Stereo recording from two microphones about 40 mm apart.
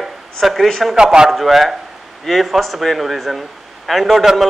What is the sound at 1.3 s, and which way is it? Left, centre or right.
A man's voice, centre.